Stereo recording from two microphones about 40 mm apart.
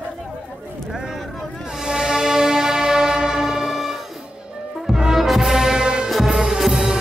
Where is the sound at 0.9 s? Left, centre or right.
Centre.